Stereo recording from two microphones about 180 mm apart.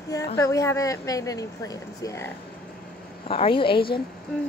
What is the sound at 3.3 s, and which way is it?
Speech, 30° left (ahead or behind).